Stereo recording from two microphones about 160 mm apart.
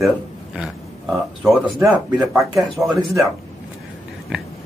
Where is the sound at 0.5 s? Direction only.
5° right (ahead or behind).